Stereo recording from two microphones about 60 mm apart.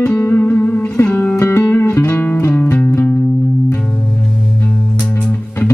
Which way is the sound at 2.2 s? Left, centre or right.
Left.